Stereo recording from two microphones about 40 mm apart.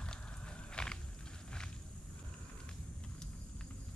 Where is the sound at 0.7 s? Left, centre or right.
Left.